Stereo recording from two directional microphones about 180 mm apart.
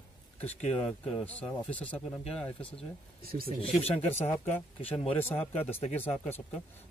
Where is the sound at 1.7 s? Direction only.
10° left (ahead or behind).